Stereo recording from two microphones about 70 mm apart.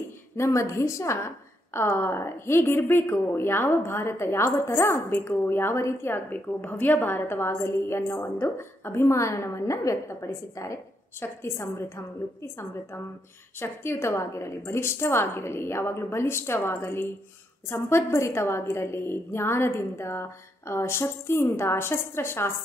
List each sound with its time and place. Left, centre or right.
0.4 s a woman's voice: left
6.1 s a woman's voice: left
11.1 s a woman's voice: left